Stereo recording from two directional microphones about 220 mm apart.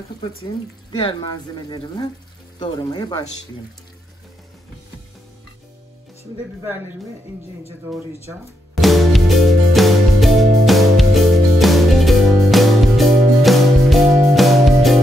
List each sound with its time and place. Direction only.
0.9 s speech: 20° left (ahead or behind)
8.8 s music: centre (ahead or behind)